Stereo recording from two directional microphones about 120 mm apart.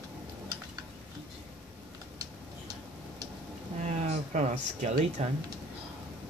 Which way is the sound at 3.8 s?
70° right (ahead or behind).